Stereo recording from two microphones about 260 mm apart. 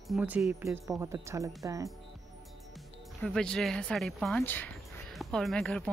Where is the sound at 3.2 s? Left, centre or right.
Centre.